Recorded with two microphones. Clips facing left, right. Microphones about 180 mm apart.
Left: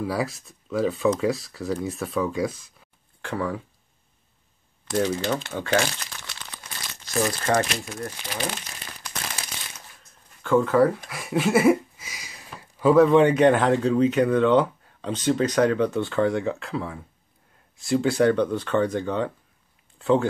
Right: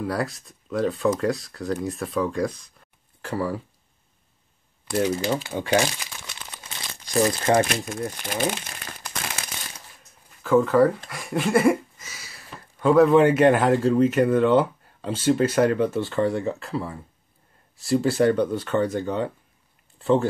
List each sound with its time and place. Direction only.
0.0 s a man's voice: centre (ahead or behind)
4.9 s speech: 10° right (ahead or behind)
10.4 s a man's voice: centre (ahead or behind)
11.1 s a sound: centre (ahead or behind)
12.1 s a sound: 15° left (ahead or behind)
12.8 s a man's voice: centre (ahead or behind)